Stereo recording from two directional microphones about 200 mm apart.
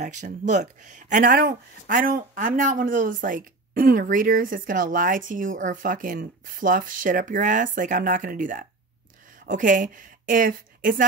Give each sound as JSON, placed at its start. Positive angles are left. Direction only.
{"t": 0.0, "sound": "speech", "side_deg": -40}